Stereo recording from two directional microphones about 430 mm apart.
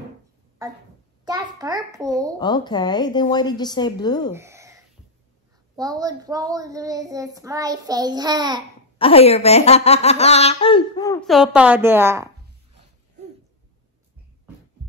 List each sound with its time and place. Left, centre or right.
1.2 s a child's voice: centre
2.3 s speech: centre
4.3 s a sound: centre
5.8 s a child's voice: centre
8.9 s speech: centre